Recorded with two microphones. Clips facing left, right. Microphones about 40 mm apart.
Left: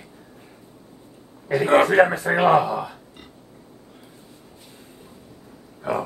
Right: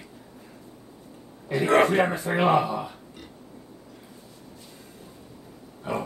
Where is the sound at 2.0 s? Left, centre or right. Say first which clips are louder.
Left 6 dB; left.